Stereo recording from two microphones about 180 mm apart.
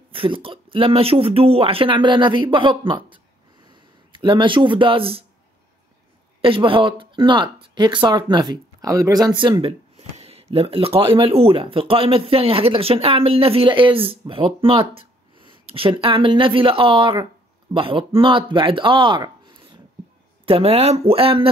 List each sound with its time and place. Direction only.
0.1 s speech: 30° right (ahead or behind)
6.4 s speech: 30° right (ahead or behind)